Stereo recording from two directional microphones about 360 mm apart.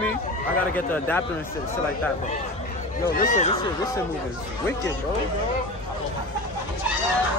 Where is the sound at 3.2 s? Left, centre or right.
Centre.